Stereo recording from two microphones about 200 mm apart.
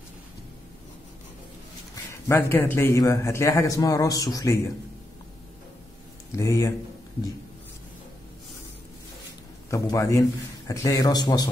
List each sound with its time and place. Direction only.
2.2 s a man's voice: 10° left (ahead or behind)
6.3 s a man's voice: 15° left (ahead or behind)
9.7 s a man's voice: 15° left (ahead or behind)